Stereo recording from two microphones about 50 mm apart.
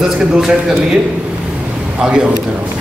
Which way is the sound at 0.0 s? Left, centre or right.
Centre.